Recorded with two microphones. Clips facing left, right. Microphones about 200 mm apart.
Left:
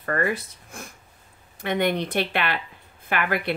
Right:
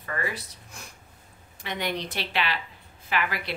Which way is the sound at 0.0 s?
55° left (ahead or behind).